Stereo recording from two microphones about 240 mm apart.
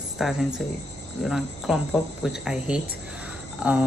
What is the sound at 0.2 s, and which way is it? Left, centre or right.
Speech, centre.